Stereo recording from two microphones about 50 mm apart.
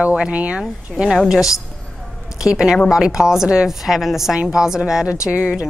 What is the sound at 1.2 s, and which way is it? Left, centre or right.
A woman's voice, centre.